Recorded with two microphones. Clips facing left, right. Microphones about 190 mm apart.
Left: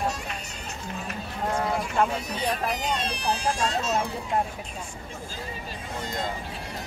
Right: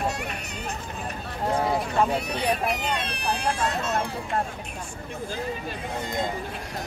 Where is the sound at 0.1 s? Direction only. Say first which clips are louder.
Right 3 dB; 65° right (ahead or behind).